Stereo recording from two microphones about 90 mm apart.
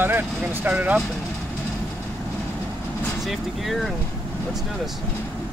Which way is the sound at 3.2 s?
Centre (ahead or behind).